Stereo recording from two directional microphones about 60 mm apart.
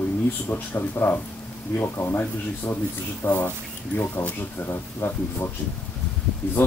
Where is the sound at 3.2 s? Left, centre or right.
Left.